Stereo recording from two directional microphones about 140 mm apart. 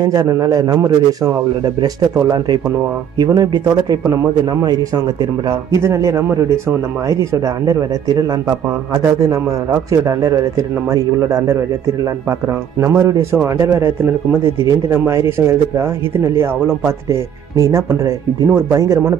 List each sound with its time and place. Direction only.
0.0 s speech: 25° right (ahead or behind)
12.8 s speech: 20° right (ahead or behind)